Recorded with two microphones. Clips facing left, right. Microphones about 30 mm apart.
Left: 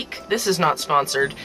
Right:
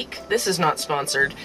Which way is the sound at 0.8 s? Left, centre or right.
Centre.